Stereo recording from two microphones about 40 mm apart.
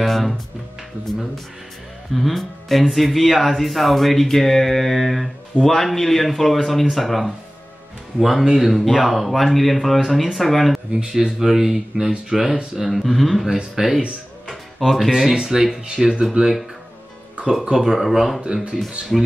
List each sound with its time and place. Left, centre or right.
0.0 s speech: centre
2.1 s speech: centre
10.9 s speech: right
11.4 s speech: centre
12.9 s speech: centre
14.8 s speech: centre
15.3 s speech: centre
17.6 s speech: centre
18.4 s speech: right
19.1 s speech: centre